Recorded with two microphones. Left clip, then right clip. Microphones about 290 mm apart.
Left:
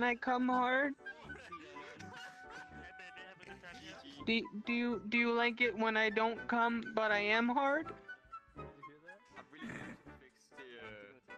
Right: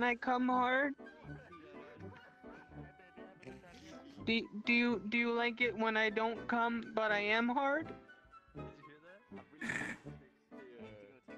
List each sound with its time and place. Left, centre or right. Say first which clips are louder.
0.0 s speech: even; centre
2.0 s music: left 5 dB; left
3.8 s music: even; centre
4.6 s speech: right 8 dB; centre
5.1 s speech: left 5 dB; centre
9.6 s music: right 8 dB; right